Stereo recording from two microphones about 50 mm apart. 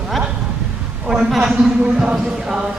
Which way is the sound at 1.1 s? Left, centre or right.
Centre.